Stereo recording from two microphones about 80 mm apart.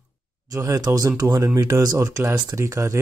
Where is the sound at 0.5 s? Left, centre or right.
Right.